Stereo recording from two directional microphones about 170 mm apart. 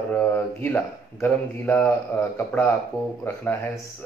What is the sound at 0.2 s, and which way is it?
Speech, 10° left (ahead or behind).